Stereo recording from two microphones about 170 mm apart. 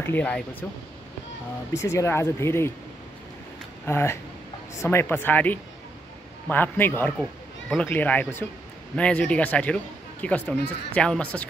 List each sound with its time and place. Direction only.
0.0 s speech: 10° left (ahead or behind)
1.8 s speech: 15° left (ahead or behind)
3.8 s speech: 15° left (ahead or behind)